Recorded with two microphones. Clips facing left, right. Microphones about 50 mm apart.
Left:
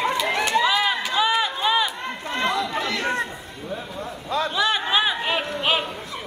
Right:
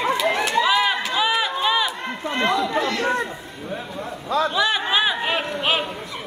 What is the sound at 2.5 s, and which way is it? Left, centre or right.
Chatter, centre.